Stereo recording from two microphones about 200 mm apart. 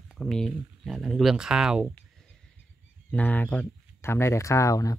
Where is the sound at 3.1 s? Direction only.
10° left (ahead or behind).